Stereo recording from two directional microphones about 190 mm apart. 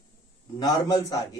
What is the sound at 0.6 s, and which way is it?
Speech, 20° left (ahead or behind).